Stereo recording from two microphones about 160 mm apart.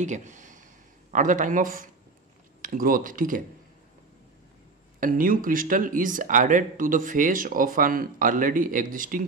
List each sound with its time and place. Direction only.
0.0 s a sound: 50° right (ahead or behind)
1.1 s speech: 55° right (ahead or behind)
5.0 s speech: 60° right (ahead or behind)